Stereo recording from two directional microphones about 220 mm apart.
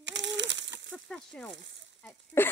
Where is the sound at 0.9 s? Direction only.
5° left (ahead or behind).